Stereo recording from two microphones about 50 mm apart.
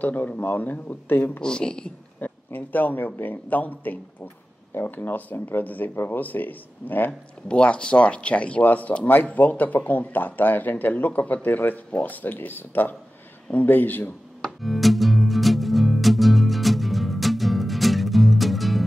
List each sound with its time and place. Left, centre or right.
0.0 s speech: left
1.4 s speech: centre
2.1 s speech: left
7.1 s speech: left
14.4 s music: centre